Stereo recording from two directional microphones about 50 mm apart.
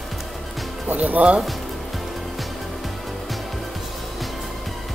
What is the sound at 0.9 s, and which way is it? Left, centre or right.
Speech, right.